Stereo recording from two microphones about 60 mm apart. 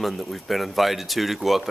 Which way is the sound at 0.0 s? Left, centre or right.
Centre.